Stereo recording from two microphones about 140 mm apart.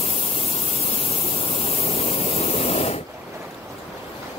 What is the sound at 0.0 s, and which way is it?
Pink noise, 45° left (ahead or behind).